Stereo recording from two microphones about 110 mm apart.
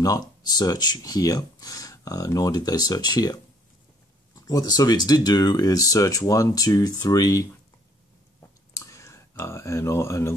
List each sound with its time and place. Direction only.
0.0 s speech: 35° left (ahead or behind)
4.4 s speech: 30° left (ahead or behind)
8.4 s clicking: 25° left (ahead or behind)